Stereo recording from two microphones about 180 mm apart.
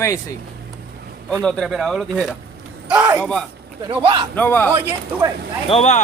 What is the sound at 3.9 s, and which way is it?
Speech, 25° right (ahead or behind).